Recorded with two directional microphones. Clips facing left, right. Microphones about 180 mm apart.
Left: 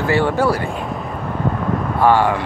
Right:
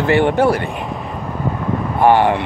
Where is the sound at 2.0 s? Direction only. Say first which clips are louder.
Right 2 dB; 20° right (ahead or behind).